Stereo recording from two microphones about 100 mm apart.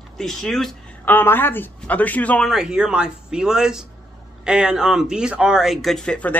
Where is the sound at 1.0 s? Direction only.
20° left (ahead or behind).